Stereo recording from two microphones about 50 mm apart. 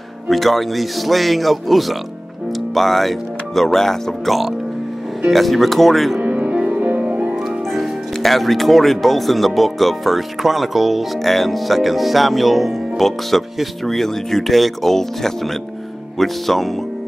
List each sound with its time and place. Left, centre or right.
0.3 s speech: centre
6.2 s music: right
7.7 s speech: centre